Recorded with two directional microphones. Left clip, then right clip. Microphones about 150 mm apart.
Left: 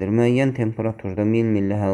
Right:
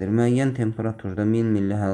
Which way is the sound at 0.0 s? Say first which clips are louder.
Left 3 dB; 25° left (ahead or behind).